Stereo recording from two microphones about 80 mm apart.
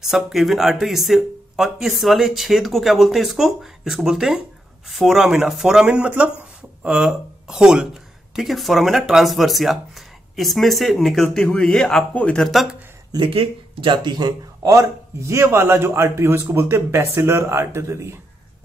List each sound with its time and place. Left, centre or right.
0.0 s speech: centre
13.1 s speech: right
14.6 s a man's voice: right